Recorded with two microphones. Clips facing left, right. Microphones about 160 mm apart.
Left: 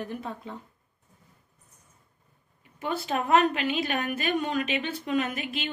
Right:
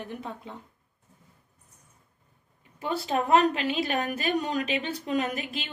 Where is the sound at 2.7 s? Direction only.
35° right (ahead or behind).